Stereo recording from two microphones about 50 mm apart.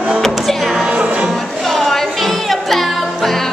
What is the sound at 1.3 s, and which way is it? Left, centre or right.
Music, centre.